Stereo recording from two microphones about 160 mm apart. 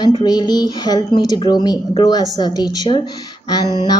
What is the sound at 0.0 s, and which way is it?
A woman's voice, 25° left (ahead or behind).